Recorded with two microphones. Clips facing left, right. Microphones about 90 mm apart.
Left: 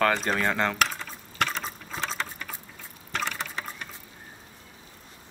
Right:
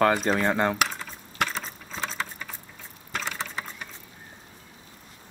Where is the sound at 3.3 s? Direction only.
5° right (ahead or behind).